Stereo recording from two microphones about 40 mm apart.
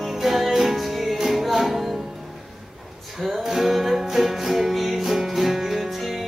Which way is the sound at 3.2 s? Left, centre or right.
Centre.